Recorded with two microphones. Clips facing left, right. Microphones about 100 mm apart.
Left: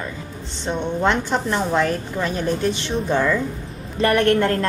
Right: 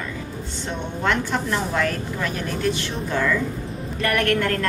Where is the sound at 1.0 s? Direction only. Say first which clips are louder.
Left 1 dB; 20° left (ahead or behind).